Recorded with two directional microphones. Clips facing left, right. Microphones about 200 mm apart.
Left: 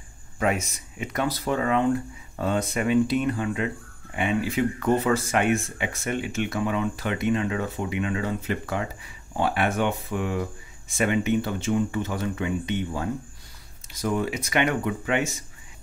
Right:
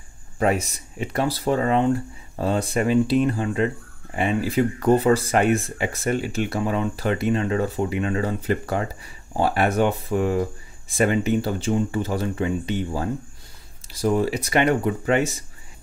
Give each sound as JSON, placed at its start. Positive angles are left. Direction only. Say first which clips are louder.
{"t": 0.4, "sound": "speech", "louder": "right 4 dB", "side_deg": -35}